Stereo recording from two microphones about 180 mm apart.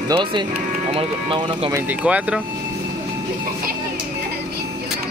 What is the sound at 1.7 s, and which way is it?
Speech, 10° right (ahead or behind).